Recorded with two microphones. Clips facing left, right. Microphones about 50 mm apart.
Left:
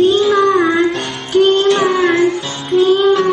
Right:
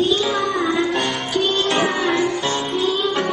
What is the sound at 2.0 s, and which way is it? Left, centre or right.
Music, left.